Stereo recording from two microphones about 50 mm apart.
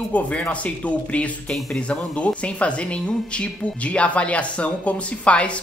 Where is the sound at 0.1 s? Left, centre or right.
Left.